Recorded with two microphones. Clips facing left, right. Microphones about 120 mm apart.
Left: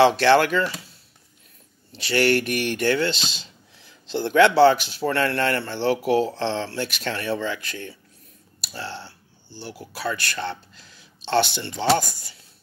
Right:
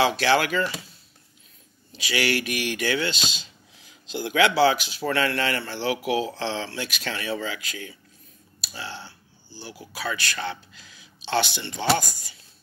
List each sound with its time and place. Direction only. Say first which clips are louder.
0.0 s speech: left 5 dB; 60° left (ahead or behind)
1.9 s speech: left 5 dB; 60° left (ahead or behind)
10.8 s a sound: even; 60° left (ahead or behind)
12.0 s speech: left 3 dB; 60° left (ahead or behind)